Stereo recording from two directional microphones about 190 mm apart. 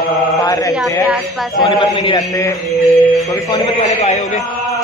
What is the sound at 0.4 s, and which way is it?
Chant, 20° left (ahead or behind).